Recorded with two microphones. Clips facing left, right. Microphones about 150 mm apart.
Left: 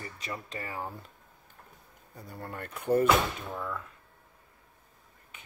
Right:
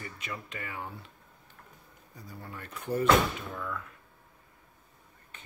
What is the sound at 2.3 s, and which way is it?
Speech, 55° left (ahead or behind).